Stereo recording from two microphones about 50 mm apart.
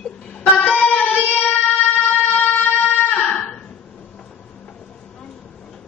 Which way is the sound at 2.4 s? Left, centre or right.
Left.